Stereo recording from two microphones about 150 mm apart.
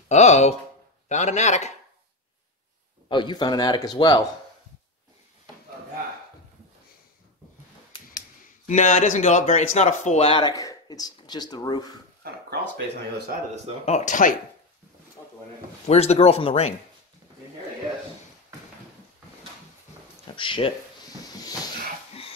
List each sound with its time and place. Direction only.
0.1 s speech: 50° left (ahead or behind)
3.1 s speech: 30° left (ahead or behind)
8.6 s speech: 55° left (ahead or behind)
10.4 s speech: 25° left (ahead or behind)
12.2 s a sound: 90° right
13.8 s speech: 50° left (ahead or behind)
15.9 s speech: 45° left (ahead or behind)
20.3 s speech: 35° left (ahead or behind)